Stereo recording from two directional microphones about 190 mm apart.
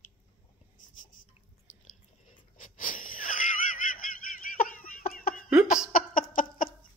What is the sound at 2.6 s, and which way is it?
Wheeze, 45° left (ahead or behind).